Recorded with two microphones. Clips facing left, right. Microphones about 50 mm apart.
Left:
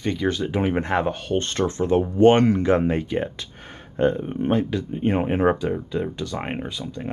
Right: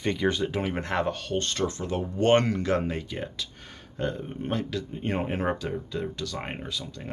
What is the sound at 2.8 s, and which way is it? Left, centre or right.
Speech, left.